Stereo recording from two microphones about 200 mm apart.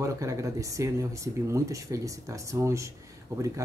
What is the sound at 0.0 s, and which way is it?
Speech, 15° right (ahead or behind).